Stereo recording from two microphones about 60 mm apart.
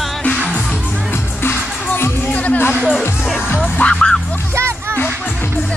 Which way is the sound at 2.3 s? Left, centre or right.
Left.